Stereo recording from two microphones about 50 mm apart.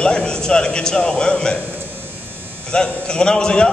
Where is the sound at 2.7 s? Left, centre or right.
Centre.